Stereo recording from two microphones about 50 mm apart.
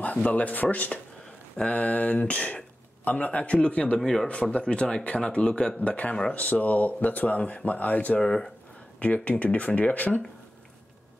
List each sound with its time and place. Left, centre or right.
0.0 s a man's voice: left
4.0 s speech: centre
4.3 s a man's voice: left
8.2 s speech: centre
9.0 s a man's voice: left